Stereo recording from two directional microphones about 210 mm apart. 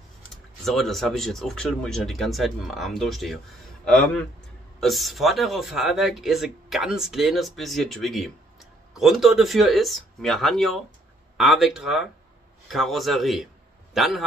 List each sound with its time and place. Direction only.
0.2 s speech: centre (ahead or behind)